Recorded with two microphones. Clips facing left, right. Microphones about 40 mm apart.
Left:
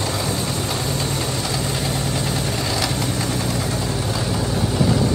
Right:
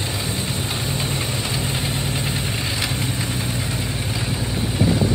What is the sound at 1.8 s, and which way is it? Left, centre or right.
Vehicle, right.